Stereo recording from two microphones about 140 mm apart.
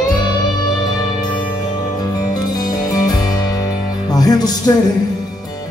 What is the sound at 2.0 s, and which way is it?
Music, 30° left (ahead or behind).